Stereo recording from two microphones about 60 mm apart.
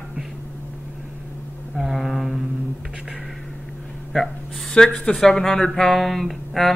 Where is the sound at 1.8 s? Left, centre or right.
Centre.